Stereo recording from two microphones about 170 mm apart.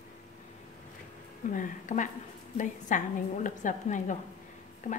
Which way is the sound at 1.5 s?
45° left (ahead or behind).